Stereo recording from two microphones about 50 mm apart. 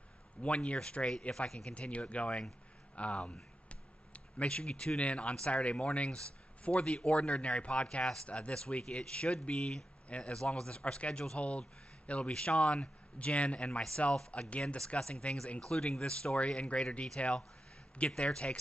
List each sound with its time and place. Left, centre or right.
0.4 s speech: left
1.7 s speech: left
3.6 s a sound: left
5.3 s speech: left